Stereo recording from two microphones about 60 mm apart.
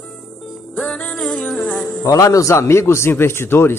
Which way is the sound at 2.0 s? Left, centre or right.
Left.